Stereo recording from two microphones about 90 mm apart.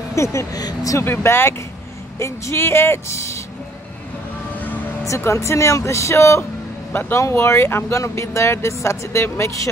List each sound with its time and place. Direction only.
0.1 s speech: 30° left (ahead or behind)
0.6 s speech: 45° left (ahead or behind)
1.0 s speech: 25° left (ahead or behind)
5.0 s speech: 35° left (ahead or behind)